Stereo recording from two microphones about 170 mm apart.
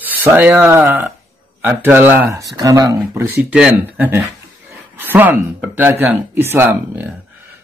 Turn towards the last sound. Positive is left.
turn(degrees=-10)  # may be behind; listen again after turning